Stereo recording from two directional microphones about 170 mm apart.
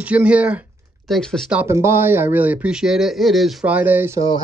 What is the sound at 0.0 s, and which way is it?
Speech, 10° right (ahead or behind).